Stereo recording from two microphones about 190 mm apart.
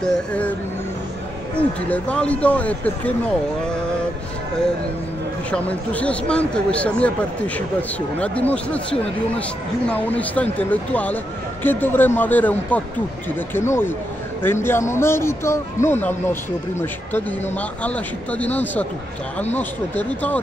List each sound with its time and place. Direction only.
0.0 s speech: 5° left (ahead or behind)
1.6 s speech: 5° left (ahead or behind)
5.5 s speech: 5° left (ahead or behind)
9.8 s speech: 10° left (ahead or behind)
17.6 s speech: 5° left (ahead or behind)
19.4 s speech: 35° left (ahead or behind)